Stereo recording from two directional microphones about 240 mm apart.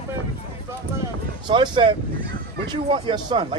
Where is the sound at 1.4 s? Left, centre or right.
Centre.